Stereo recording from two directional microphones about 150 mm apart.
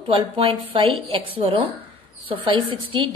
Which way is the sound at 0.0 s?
35° right (ahead or behind).